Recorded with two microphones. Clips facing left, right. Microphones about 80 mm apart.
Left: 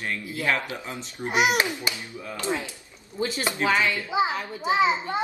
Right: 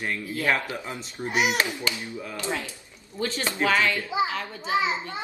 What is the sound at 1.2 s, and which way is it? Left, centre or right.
A child's voice, left.